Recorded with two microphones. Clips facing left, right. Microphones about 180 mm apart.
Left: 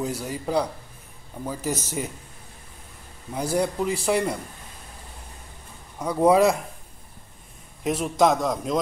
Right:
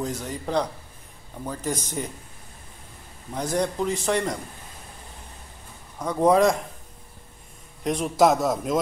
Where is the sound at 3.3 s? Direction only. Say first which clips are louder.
Left 1 dB; 10° left (ahead or behind).